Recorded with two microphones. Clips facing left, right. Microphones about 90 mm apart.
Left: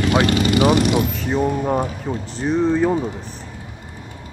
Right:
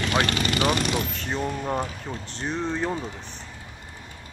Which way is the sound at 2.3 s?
5° left (ahead or behind).